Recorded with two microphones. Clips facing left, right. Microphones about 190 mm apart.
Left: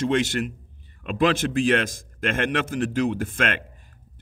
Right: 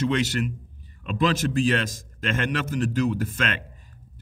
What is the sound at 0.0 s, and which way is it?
A man's voice, 50° left (ahead or behind).